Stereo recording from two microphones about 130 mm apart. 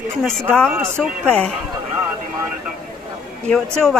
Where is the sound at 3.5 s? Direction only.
5° left (ahead or behind).